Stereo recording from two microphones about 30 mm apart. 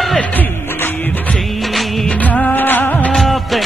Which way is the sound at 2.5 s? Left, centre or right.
Left.